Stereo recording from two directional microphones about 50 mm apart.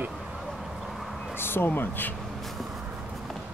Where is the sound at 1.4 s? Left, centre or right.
Left.